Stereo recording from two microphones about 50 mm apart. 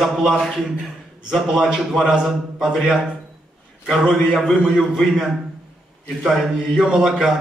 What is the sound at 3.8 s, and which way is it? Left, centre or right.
A man's voice, centre.